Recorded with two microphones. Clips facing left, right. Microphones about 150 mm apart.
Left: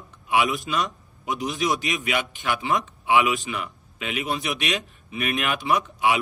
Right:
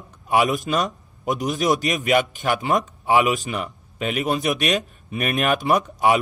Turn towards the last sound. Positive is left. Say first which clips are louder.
# right 4 dB
turn(degrees=-45)  # may be behind; listen again after turning